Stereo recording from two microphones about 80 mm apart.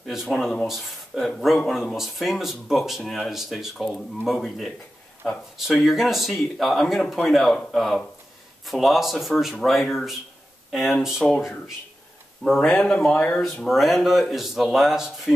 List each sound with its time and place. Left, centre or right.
0.0 s speech: centre
13.4 s speech: centre